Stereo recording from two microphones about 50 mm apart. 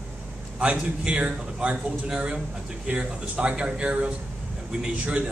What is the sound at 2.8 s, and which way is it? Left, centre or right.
Speech, right.